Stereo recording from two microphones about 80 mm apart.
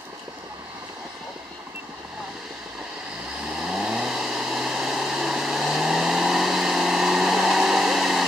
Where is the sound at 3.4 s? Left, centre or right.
Centre.